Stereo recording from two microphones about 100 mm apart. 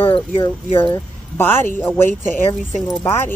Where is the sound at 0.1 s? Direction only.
60° left (ahead or behind).